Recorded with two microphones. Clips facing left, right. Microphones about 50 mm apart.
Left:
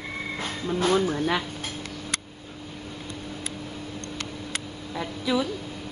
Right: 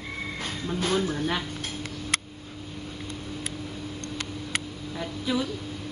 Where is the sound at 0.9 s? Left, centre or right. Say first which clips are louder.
Left 2 dB; centre.